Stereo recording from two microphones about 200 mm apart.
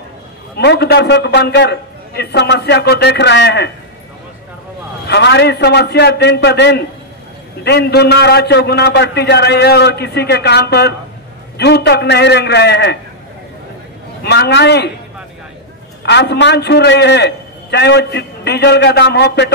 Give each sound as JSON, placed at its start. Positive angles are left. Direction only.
{"t": 0.6, "sound": "a man's voice", "side_deg": 55}
{"t": 5.0, "sound": "a man's voice", "side_deg": 60}
{"t": 14.2, "sound": "a man's voice", "side_deg": 55}
{"t": 16.0, "sound": "a man's voice", "side_deg": 60}